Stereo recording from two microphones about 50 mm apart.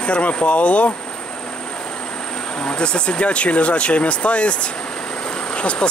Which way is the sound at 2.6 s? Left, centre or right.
Centre.